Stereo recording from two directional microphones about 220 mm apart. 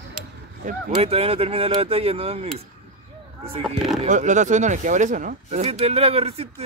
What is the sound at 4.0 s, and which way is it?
Speech, 35° right (ahead or behind).